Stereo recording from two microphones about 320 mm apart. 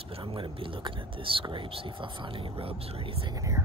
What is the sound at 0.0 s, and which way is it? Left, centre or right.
Speech, centre.